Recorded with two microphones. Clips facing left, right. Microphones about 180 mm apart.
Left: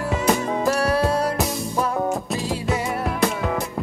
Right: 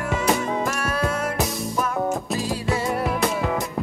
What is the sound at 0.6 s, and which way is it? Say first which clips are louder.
Music: left 5 dB; 30° left (ahead or behind).